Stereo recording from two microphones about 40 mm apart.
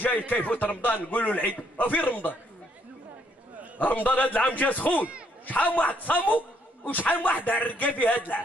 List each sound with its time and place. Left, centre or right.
0.3 s a man's voice: left
3.8 s a man's voice: left